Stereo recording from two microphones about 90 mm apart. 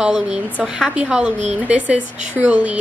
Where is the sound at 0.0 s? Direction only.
10° right (ahead or behind).